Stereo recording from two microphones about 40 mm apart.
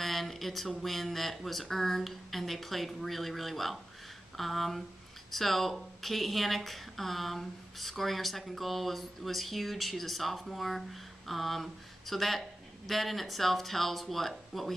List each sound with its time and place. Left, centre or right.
0.0 s speech: centre